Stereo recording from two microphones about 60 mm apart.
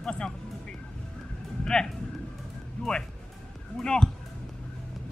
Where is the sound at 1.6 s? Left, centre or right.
Centre.